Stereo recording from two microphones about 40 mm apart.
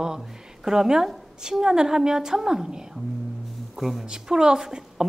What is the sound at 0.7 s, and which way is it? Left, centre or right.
A woman's voice, centre.